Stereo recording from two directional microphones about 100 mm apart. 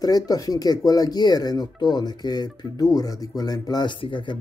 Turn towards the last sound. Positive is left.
turn(degrees=55)  # may be behind; listen again after turning